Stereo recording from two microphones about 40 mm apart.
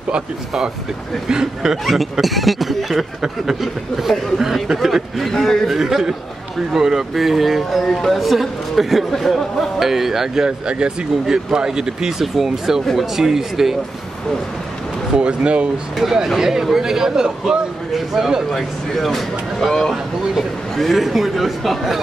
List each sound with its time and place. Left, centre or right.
1.3 s speech: centre
2.2 s speech: centre
4.7 s speech: centre
5.3 s speech: centre
5.7 s speech: centre
9.1 s speech: centre
9.8 s speech: centre
15.1 s speech: right
16.0 s speech: centre
18.5 s speech: centre